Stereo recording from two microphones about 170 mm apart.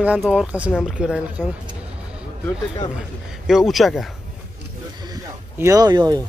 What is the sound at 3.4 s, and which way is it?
Speech, centre (ahead or behind).